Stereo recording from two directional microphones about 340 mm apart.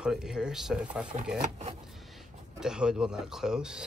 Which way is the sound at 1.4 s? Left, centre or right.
Centre.